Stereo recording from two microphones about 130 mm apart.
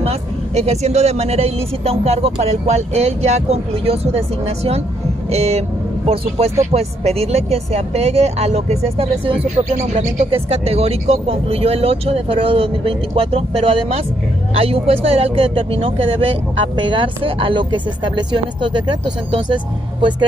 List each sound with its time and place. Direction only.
0.6 s speech: 55° right (ahead or behind)
5.3 s speech: 55° right (ahead or behind)
9.6 s speech: 60° right (ahead or behind); by 20.2 s 40° right (ahead or behind)